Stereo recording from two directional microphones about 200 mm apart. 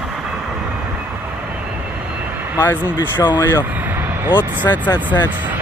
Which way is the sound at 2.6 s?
20° left (ahead or behind).